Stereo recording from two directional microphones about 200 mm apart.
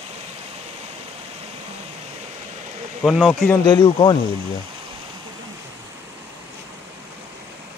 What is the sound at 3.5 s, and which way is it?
Speech, 20° left (ahead or behind).